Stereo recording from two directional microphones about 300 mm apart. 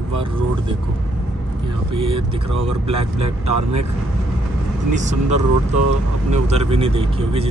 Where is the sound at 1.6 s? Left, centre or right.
Centre.